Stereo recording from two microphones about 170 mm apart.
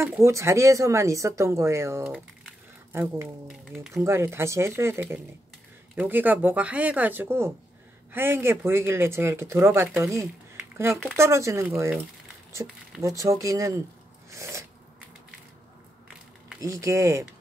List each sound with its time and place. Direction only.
0.0 s speech: 15° right (ahead or behind)
3.4 s speech: 5° right (ahead or behind)
3.9 s speech: 15° right (ahead or behind)
14.3 s a sound: 20° right (ahead or behind)
16.6 s speech: 20° right (ahead or behind)